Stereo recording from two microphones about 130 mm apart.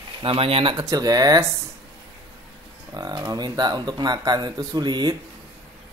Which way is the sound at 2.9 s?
30° right (ahead or behind).